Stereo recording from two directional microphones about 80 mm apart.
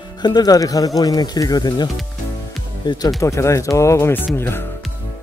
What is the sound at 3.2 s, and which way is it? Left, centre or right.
Speech, left.